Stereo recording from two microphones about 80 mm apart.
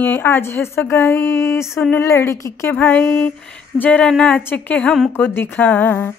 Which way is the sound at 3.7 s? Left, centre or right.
Centre.